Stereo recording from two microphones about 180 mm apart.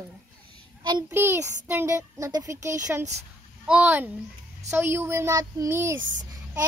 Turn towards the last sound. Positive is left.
turn(degrees=-15)  # may be behind; listen again after turning